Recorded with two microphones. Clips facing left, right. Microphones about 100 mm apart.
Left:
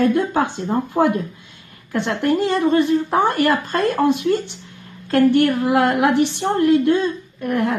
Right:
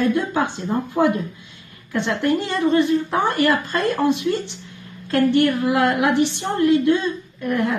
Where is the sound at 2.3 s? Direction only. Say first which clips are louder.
Left 3 dB; 40° left (ahead or behind).